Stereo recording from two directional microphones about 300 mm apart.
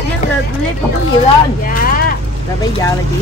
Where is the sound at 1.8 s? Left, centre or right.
Left.